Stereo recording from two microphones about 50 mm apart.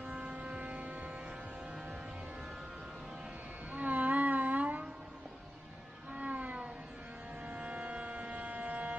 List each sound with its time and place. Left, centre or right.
0.0 s vehicle: right
3.7 s music: right
6.1 s cat: right
7.4 s a sound: right